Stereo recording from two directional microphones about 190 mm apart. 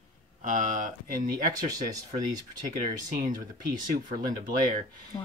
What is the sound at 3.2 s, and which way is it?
Speech, 20° right (ahead or behind).